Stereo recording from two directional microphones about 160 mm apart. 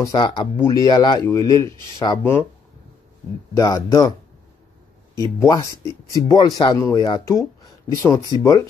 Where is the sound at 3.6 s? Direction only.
25° left (ahead or behind).